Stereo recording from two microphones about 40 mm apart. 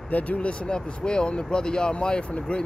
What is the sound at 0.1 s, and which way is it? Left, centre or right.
Speech, left.